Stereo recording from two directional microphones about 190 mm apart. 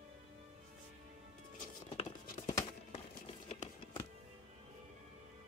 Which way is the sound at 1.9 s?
25° left (ahead or behind).